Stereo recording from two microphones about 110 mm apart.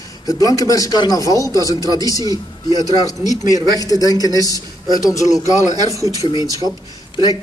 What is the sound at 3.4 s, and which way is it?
Speech, 35° right (ahead or behind).